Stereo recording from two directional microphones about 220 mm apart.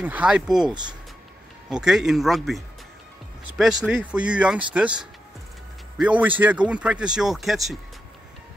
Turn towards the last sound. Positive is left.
turn(degrees=0)  # may be behind; listen again after turning